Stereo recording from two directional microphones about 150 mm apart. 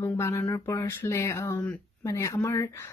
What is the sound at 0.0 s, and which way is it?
A woman's voice, 15° left (ahead or behind).